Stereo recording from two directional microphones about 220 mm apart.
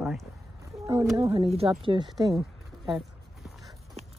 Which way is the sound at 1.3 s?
25° right (ahead or behind).